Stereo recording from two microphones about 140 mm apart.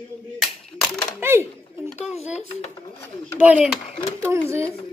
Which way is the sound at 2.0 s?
50° left (ahead or behind).